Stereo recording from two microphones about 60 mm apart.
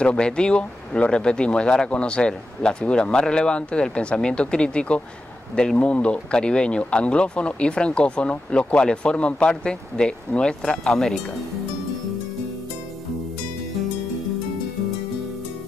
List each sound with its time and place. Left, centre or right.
0.0 s speech: centre